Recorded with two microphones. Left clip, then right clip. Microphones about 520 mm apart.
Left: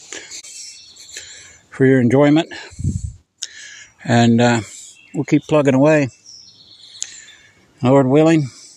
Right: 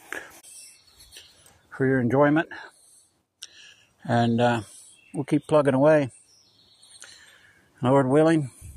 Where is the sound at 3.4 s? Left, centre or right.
Right.